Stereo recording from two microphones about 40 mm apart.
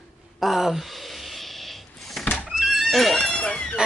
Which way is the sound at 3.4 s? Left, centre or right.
Left.